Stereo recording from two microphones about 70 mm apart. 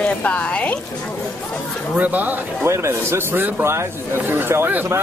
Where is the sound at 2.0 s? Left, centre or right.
Right.